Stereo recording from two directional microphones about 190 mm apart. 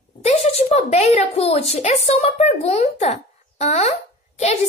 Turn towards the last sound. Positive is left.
turn(degrees=35)  # may be behind; listen again after turning